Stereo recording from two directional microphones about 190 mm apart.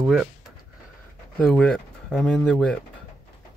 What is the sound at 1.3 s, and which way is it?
Speech, 5° left (ahead or behind).